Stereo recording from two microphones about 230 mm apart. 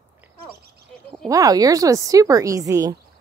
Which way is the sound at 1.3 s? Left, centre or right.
Centre.